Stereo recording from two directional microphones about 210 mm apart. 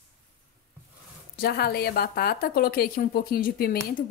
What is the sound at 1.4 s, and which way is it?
A woman's voice, 50° left (ahead or behind).